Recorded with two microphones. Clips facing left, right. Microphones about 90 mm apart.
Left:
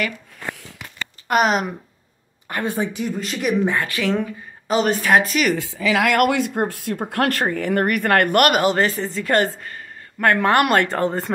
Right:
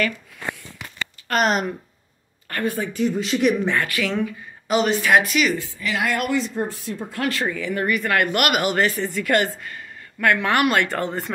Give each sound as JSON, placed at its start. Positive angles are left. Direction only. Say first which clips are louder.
{"t": 1.3, "sound": "speech", "louder": "left 2 dB", "side_deg": 5}
{"t": 2.4, "sound": "a woman's voice", "louder": "left 1 dB", "side_deg": 20}
{"t": 3.0, "sound": "speech", "louder": "right 5 dB", "side_deg": 0}
{"t": 3.6, "sound": "speech", "louder": "left 2 dB", "side_deg": 25}
{"t": 4.6, "sound": "speech", "louder": "left 1 dB", "side_deg": 40}
{"t": 5.5, "sound": "speech", "louder": "left 5 dB", "side_deg": 90}